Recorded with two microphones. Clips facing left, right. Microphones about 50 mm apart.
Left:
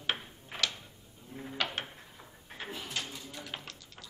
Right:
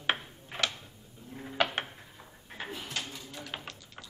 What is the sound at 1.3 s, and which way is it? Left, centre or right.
Mechanisms, centre.